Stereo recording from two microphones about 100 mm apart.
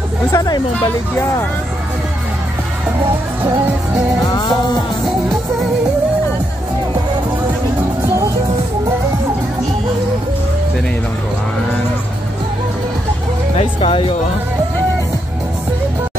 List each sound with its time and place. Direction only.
0.3 s speech: 40° left (ahead or behind)
13.6 s speech: 70° left (ahead or behind)